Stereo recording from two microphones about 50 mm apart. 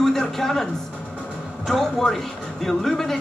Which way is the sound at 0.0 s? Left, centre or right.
Centre.